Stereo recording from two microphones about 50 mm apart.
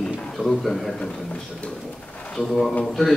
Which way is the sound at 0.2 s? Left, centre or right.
Centre.